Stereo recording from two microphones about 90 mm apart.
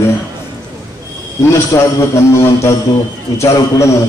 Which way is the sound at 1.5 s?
35° left (ahead or behind).